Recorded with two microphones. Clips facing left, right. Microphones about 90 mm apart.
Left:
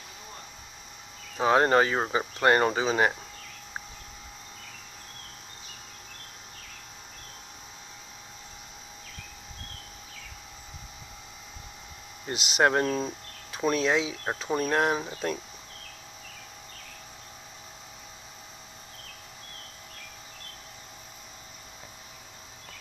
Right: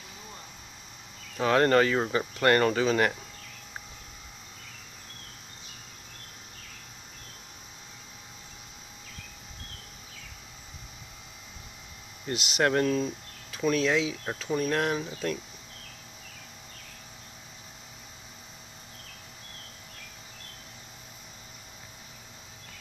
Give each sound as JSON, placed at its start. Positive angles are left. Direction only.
{"t": 1.4, "sound": "speech", "side_deg": 20}
{"t": 12.3, "sound": "speech", "side_deg": 20}